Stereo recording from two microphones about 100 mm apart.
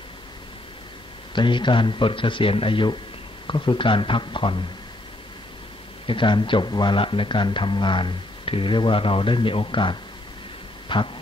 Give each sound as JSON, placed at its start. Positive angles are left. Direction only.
{"t": 1.3, "sound": "speech", "side_deg": 50}
{"t": 6.0, "sound": "speech", "side_deg": 55}